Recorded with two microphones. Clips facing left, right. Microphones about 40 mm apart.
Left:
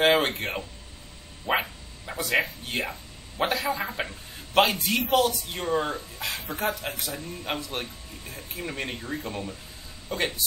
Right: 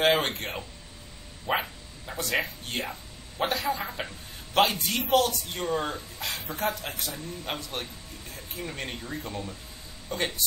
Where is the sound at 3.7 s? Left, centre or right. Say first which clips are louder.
Left 2 dB; left.